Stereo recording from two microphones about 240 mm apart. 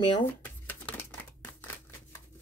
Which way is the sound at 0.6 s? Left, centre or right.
Centre.